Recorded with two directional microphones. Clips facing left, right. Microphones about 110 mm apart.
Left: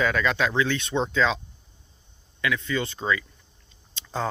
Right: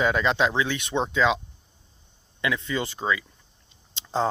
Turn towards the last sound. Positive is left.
turn(degrees=-25)  # may be behind; listen again after turning